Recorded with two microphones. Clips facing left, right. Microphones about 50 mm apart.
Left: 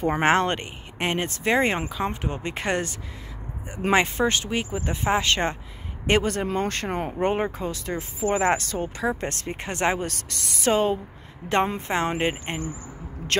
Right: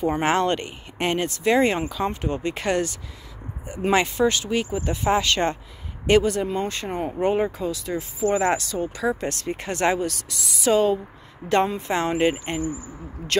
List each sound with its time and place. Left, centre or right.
0.0 s speech: left
0.3 s speech: left
6.2 s speech: left
7.3 s speech: left
8.2 s speech: left
8.5 s speech: left
9.9 s speech: left
10.7 s speech: left
13.3 s speech: left